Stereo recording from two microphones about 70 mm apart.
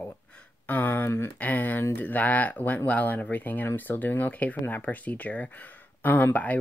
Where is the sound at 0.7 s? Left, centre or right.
Left.